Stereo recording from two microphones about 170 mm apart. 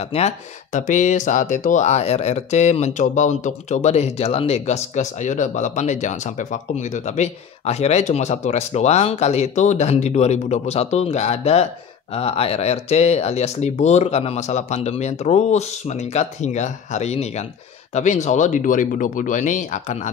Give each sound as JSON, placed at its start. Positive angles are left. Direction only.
{"t": 0.0, "sound": "speech", "side_deg": 40}